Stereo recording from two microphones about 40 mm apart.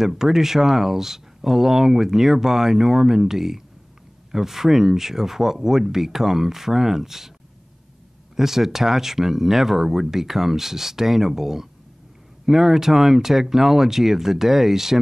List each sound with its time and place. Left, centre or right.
0.0 s speech: centre
8.4 s speech: centre